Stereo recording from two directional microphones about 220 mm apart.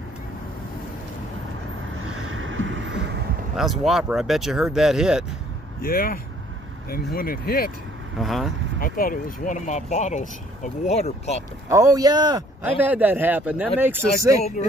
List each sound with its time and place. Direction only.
2.0 s vehicle: 65° right (ahead or behind)
3.5 s speech: centre (ahead or behind)
5.8 s speech: 40° left (ahead or behind)
7.2 s speech: 40° left (ahead or behind)
8.2 s speech: centre (ahead or behind)
8.7 s speech: 40° left (ahead or behind)
11.7 s speech: 15° right (ahead or behind)
12.8 s speech: 10° right (ahead or behind)